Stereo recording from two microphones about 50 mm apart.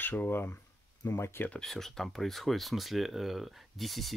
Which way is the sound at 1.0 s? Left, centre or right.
Left.